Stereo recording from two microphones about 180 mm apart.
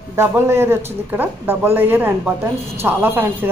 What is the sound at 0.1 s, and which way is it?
Speech, 15° right (ahead or behind).